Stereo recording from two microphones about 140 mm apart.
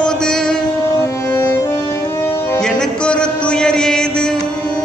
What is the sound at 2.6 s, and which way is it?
Music, 5° left (ahead or behind).